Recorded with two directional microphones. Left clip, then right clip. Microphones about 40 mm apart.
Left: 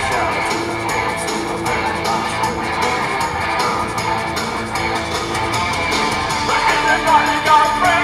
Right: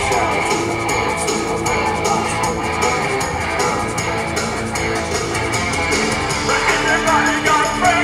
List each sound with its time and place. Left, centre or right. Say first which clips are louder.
6.5 s music: left 1 dB; centre